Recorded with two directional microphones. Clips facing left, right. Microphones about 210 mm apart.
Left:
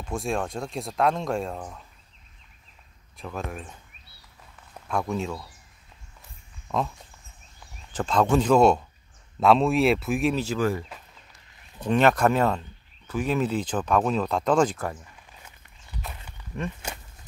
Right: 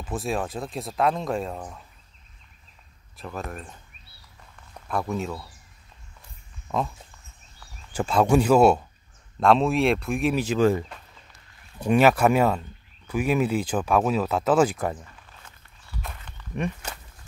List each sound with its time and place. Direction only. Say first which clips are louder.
0.0 s speech: even; 5° right (ahead or behind)
3.2 s speech: even; centre (ahead or behind)
4.8 s speech: even; centre (ahead or behind)
6.7 s speech: even; 5° right (ahead or behind)
7.9 s speech: right 2 dB; 10° right (ahead or behind)
10.3 s speech: right 4 dB; 20° right (ahead or behind)
11.8 s speech: right 2 dB; 10° right (ahead or behind)
16.4 s walk: right 2 dB; 10° left (ahead or behind)
16.8 s speech: left 1 dB; 10° left (ahead or behind)